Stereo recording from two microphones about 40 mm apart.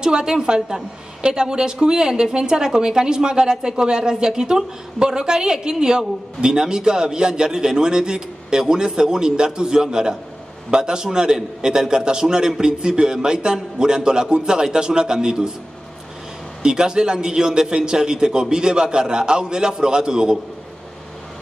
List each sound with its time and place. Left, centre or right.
0.0 s a man's voice: centre
16.6 s a man's voice: centre